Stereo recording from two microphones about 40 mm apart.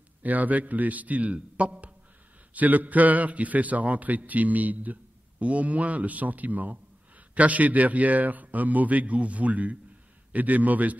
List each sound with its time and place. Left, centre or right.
0.2 s a man's voice: right
2.5 s a man's voice: right